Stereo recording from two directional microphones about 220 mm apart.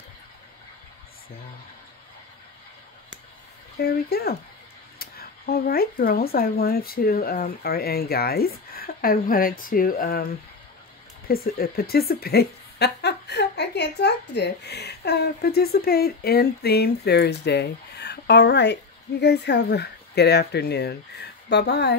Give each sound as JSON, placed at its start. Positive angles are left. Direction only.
{"t": 3.7, "sound": "a woman's voice", "side_deg": 45}
{"t": 11.2, "sound": "a woman's voice", "side_deg": 45}